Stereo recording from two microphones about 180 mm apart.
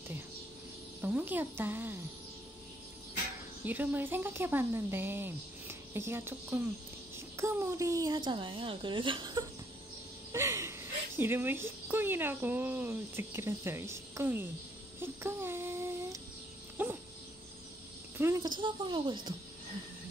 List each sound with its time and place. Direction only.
1.0 s speech: 10° right (ahead or behind)
3.6 s speech: 10° right (ahead or behind)
15.0 s a sound: 15° right (ahead or behind)
16.8 s dog: 10° right (ahead or behind)
18.1 s speech: 15° right (ahead or behind)